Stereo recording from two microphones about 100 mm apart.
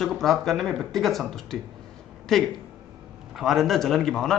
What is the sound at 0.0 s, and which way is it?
A man's voice, 5° left (ahead or behind).